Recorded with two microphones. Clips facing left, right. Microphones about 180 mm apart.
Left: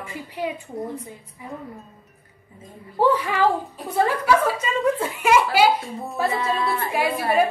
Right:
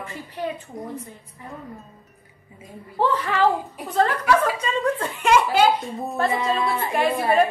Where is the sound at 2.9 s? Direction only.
10° left (ahead or behind).